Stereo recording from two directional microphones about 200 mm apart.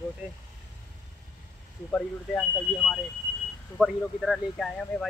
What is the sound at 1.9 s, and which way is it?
Speech, 5° left (ahead or behind).